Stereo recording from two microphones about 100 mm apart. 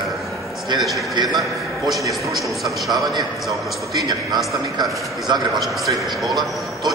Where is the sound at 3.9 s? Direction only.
45° right (ahead or behind).